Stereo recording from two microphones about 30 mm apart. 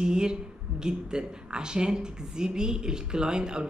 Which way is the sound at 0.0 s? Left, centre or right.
Right.